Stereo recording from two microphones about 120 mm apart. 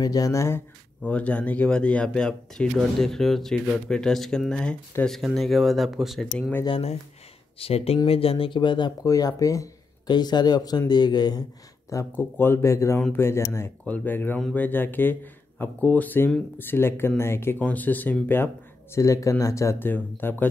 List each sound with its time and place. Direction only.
0.0 s speech: 30° left (ahead or behind)
1.0 s speech: 10° left (ahead or behind)
7.5 s speech: 55° left (ahead or behind); by 11.4 s 35° left (ahead or behind)
12.1 s speech: 20° left (ahead or behind)
18.9 s speech: 25° left (ahead or behind)